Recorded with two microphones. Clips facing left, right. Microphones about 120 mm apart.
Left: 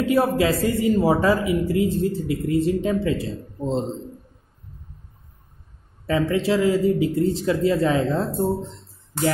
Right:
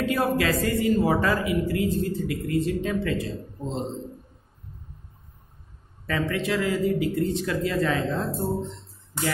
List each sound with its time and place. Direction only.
0.1 s speech: 25° left (ahead or behind)
6.0 s speech: 25° left (ahead or behind)